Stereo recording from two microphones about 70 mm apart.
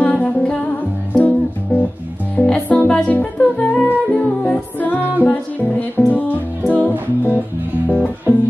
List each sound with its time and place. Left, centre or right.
0.0 s music: left